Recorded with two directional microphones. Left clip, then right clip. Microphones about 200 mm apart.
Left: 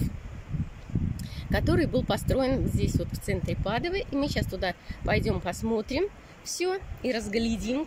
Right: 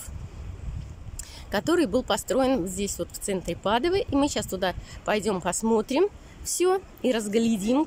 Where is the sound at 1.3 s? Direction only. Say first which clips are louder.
Right 3 dB; 10° right (ahead or behind).